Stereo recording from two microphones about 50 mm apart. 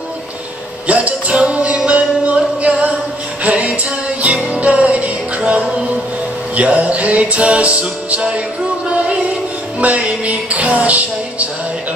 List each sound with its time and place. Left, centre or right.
0.8 s music: right
9.8 s music: right